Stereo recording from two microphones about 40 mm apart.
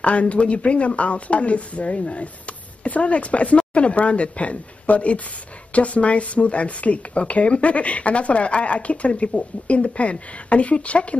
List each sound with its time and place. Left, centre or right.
0.0 s speech: left